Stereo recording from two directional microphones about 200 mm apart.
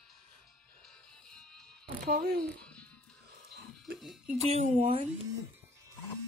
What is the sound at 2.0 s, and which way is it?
Speech, 55° right (ahead or behind).